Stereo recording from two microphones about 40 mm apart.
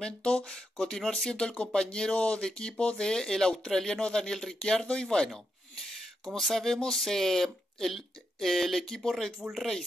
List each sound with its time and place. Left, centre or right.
0.0 s speech: left
6.3 s speech: centre
9.4 s speech: centre